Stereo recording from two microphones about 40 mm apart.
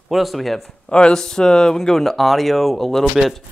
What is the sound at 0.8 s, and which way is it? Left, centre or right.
Speech, left.